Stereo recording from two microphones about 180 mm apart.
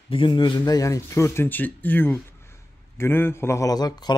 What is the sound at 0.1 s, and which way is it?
A man's voice, 30° left (ahead or behind).